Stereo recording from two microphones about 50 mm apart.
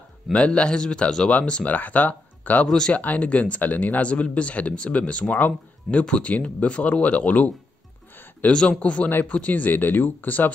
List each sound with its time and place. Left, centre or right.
0.3 s speech: left
1.6 s speech: left
8.5 s speech: left